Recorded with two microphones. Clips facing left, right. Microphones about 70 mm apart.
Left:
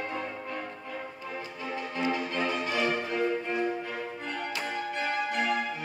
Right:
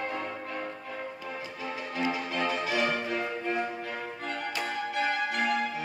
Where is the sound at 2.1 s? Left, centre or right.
Centre.